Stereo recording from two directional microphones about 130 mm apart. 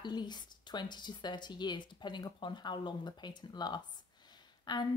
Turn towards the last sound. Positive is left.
turn(degrees=35)  # may be behind; listen again after turning